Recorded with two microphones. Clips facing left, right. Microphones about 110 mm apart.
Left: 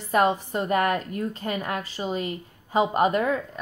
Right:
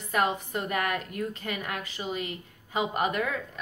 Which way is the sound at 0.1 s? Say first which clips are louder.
Left 6 dB; 35° left (ahead or behind).